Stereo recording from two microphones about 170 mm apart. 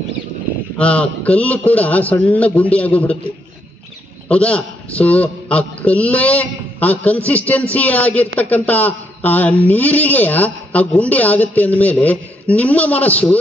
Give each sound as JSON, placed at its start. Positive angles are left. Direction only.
{"t": 0.7, "sound": "speech", "side_deg": 5}
{"t": 4.3, "sound": "speech", "side_deg": 5}